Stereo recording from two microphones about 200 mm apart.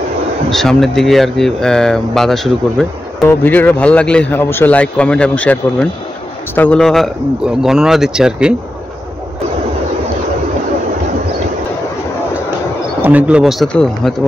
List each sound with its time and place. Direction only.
0.5 s speech: centre (ahead or behind)
13.0 s speech: 5° right (ahead or behind)